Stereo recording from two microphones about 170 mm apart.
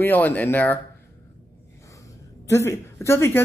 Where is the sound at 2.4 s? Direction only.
15° left (ahead or behind).